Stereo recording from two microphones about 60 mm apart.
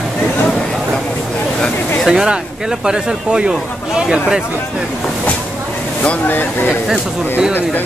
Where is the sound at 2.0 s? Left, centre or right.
Centre.